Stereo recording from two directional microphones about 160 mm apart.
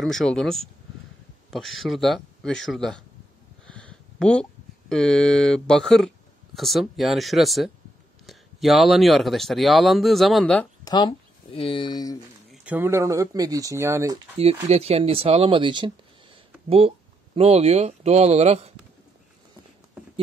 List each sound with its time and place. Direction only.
0.0 s speech: centre (ahead or behind)
10.8 s speech: 25° left (ahead or behind)
12.6 s speech: 15° right (ahead or behind)
14.3 s speech: 40° right (ahead or behind)